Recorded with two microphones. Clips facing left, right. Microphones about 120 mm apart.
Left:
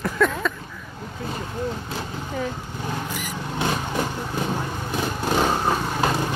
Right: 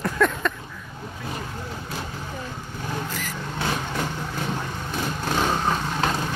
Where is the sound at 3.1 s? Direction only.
15° left (ahead or behind).